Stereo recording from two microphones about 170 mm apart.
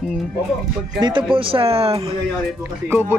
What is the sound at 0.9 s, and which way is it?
Speech, 25° right (ahead or behind).